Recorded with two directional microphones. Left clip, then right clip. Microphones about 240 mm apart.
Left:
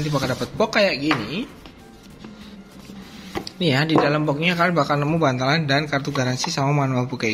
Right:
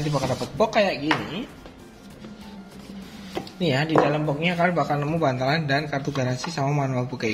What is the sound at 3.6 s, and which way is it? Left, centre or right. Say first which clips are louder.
A man's voice: left 2 dB; centre.